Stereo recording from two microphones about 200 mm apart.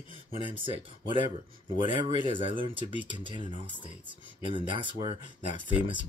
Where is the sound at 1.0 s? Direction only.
25° right (ahead or behind).